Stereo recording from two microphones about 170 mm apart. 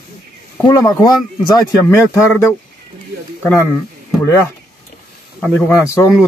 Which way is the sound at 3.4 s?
15° left (ahead or behind).